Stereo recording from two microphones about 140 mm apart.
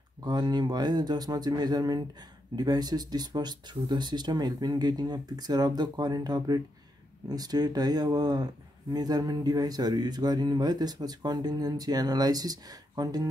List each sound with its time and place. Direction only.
0.2 s speech: 30° right (ahead or behind)